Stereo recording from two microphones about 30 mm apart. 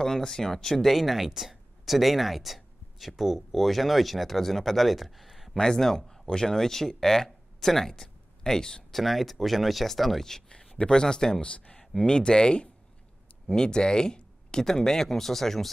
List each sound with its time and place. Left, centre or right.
0.0 s speech: centre
1.2 s speech: centre
5.6 s speech: centre
8.9 s speech: centre
10.9 s speech: left
14.6 s speech: centre